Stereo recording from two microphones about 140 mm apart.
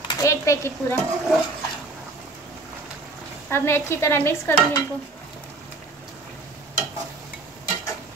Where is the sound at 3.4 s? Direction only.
20° left (ahead or behind).